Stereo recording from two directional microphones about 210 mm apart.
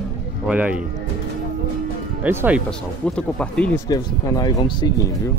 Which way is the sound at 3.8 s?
15° left (ahead or behind).